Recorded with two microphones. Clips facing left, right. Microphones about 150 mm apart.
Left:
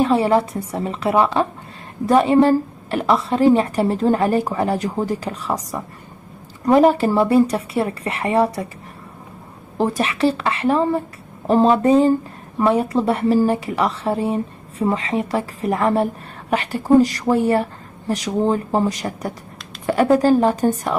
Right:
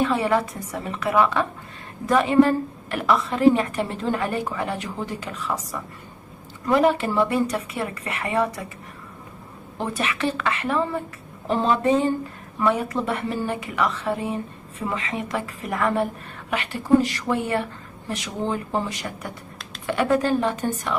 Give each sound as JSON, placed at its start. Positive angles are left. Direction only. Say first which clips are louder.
{"t": 0.0, "sound": "a woman's voice", "louder": "left 5 dB", "side_deg": 30}
{"t": 9.8, "sound": "a woman's voice", "louder": "left 7 dB", "side_deg": 35}